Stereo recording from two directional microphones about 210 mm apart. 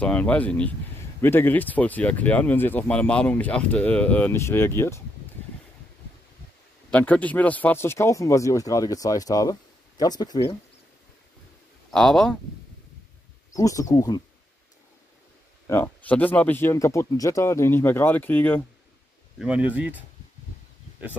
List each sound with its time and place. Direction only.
0.0 s speech: 5° left (ahead or behind)
6.9 s speech: 5° left (ahead or behind)
11.9 s speech: centre (ahead or behind)
13.5 s speech: 15° left (ahead or behind)
15.6 s speech: 10° left (ahead or behind)
19.3 s speech: 5° right (ahead or behind)